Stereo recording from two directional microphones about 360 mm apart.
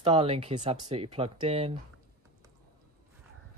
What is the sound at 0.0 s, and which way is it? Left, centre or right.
Speech, centre.